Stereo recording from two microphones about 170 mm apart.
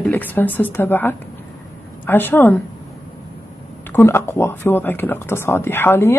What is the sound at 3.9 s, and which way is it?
Speech, 15° left (ahead or behind).